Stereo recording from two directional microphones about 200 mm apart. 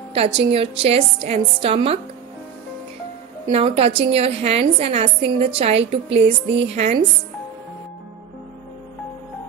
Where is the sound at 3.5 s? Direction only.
30° right (ahead or behind).